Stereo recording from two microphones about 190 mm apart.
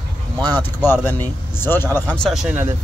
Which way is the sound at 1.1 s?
10° left (ahead or behind).